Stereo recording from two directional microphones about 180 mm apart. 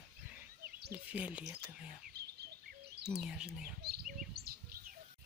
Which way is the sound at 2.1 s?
65° right (ahead or behind).